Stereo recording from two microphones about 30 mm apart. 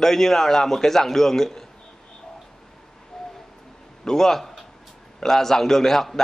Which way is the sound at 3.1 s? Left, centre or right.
Centre.